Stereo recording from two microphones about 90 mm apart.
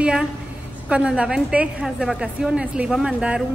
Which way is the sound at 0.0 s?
10° right (ahead or behind).